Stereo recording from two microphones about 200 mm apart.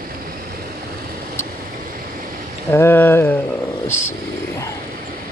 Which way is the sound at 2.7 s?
10° left (ahead or behind).